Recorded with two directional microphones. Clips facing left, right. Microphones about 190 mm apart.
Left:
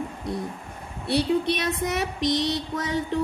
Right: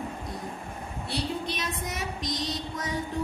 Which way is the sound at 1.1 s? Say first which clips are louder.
Left 10 dB; 65° left (ahead or behind).